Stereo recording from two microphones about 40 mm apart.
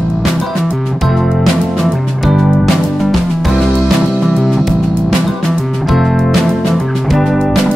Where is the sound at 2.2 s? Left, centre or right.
Centre.